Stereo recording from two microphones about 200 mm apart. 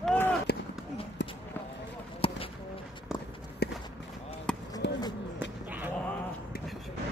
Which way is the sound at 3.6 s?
55° left (ahead or behind).